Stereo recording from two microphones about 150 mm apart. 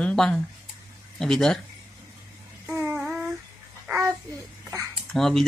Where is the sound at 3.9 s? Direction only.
15° right (ahead or behind).